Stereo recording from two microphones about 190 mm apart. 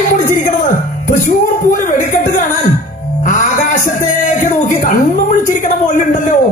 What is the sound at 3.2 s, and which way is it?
Music, 45° left (ahead or behind).